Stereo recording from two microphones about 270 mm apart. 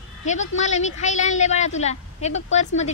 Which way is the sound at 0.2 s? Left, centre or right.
Left.